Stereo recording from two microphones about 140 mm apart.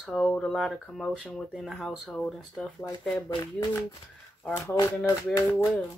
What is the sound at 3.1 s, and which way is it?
Speech, 20° left (ahead or behind).